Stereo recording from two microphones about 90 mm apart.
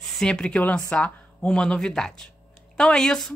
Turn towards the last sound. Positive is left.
turn(degrees=5)  # may be behind; listen again after turning